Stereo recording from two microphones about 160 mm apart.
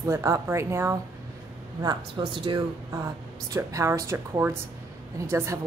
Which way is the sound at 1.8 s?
25° right (ahead or behind).